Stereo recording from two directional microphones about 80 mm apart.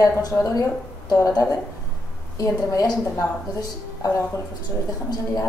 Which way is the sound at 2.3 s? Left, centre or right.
Left.